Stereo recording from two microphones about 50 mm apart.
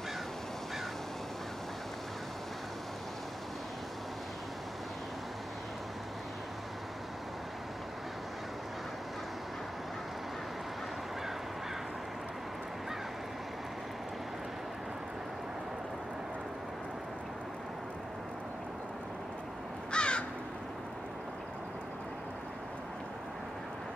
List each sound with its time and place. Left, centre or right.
19.9 s crow: centre